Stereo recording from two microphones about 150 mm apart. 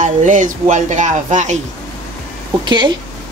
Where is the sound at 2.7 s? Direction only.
30° right (ahead or behind).